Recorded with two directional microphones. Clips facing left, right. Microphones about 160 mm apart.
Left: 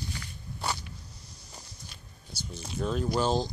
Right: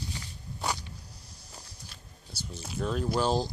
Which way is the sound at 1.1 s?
30° right (ahead or behind).